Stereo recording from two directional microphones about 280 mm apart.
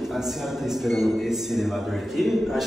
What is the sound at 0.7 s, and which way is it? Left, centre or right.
A man's voice, centre.